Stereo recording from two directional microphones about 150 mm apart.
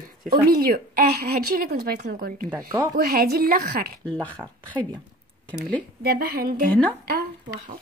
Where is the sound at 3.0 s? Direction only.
90° right; by 4.0 s 75° right (ahead or behind).